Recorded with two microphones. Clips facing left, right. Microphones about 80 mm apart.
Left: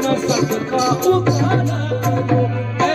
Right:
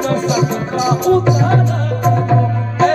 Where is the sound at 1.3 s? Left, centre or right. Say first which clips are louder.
Right 2 dB; right.